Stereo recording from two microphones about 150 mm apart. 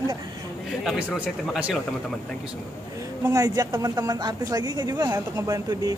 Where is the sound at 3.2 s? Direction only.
25° right (ahead or behind).